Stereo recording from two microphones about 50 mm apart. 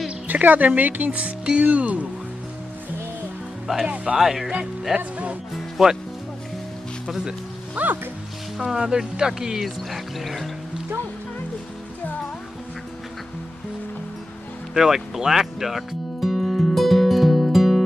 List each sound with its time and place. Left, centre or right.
0.3 s speech: right
3.8 s speech: centre
4.2 s speech: centre
4.9 s speech: right
5.8 s speech: centre
7.7 s speech: right
8.5 s speech: centre
9.8 s speech: centre
14.7 s music: centre